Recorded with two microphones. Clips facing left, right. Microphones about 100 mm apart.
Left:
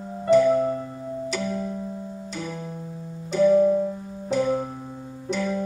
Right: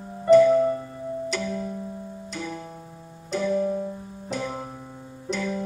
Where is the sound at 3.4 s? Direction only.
25° left (ahead or behind).